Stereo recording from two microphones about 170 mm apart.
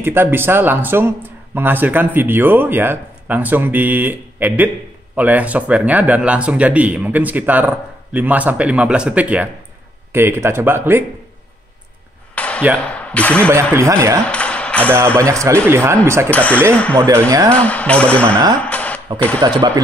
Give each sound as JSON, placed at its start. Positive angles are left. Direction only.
{"t": 0.0, "sound": "speech", "side_deg": -10}
{"t": 12.4, "sound": "a sound", "side_deg": 5}
{"t": 12.9, "sound": "speech", "side_deg": 10}
{"t": 13.5, "sound": "speech", "side_deg": -15}
{"t": 14.2, "sound": "a sound", "side_deg": 5}
{"t": 15.1, "sound": "speech", "side_deg": -15}
{"t": 16.3, "sound": "speech", "side_deg": 10}
{"t": 18.6, "sound": "a sound", "side_deg": 10}
{"t": 19.1, "sound": "speech", "side_deg": 10}
{"t": 19.4, "sound": "speech", "side_deg": -25}